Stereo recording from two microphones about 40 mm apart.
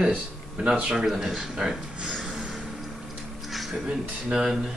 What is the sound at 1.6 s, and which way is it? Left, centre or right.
Speech, centre.